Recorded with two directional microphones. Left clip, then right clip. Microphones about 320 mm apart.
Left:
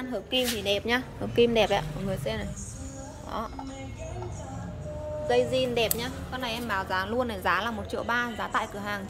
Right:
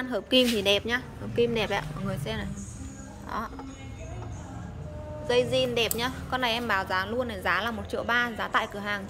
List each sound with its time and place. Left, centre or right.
0.1 s speech: centre
5.3 s speech: centre